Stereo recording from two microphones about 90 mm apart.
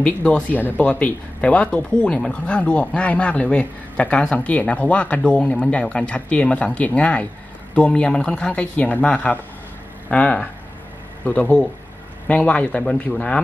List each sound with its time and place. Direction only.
0.0 s speech: 15° left (ahead or behind)